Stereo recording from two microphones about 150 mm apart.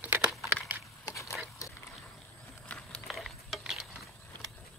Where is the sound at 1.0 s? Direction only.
20° left (ahead or behind).